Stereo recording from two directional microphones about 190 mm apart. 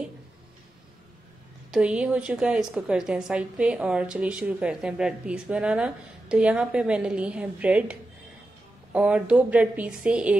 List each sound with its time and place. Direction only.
1.7 s a woman's voice: 5° right (ahead or behind)